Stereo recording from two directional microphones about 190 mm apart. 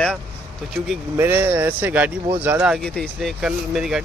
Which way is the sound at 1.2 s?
10° right (ahead or behind).